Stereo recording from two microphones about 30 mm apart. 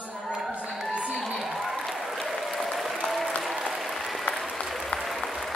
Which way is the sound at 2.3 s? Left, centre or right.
Centre.